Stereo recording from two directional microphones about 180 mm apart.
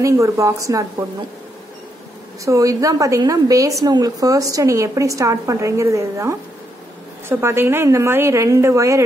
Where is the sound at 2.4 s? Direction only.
20° right (ahead or behind).